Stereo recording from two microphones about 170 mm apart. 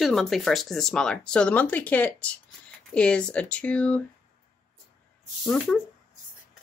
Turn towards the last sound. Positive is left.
turn(degrees=0)  # may be behind; listen again after turning